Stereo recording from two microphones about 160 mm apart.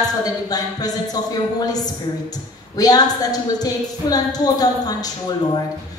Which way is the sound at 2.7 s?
25° left (ahead or behind).